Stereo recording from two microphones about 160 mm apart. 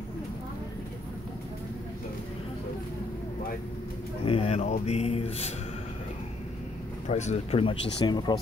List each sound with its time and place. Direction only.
4.2 s speech: 35° left (ahead or behind)
7.1 s speech: 45° left (ahead or behind); by 8.4 s 30° left (ahead or behind)